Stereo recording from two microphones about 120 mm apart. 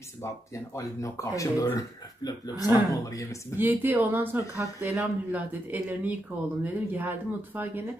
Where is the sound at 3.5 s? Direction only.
15° right (ahead or behind).